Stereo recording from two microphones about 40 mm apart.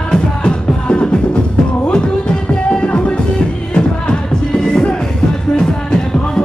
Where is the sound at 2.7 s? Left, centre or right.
Left.